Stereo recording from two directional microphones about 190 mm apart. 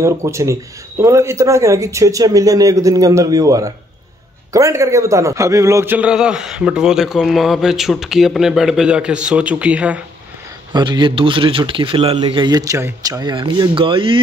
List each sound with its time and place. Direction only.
0.0 s a man's voice: 15° right (ahead or behind)
10.7 s speech: 25° right (ahead or behind)